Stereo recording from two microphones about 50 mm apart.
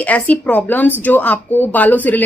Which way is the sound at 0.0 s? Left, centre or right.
Left.